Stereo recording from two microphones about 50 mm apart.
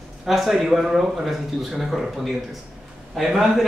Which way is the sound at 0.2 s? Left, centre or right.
Centre.